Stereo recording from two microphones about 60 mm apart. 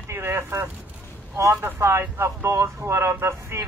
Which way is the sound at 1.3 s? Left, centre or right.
Right.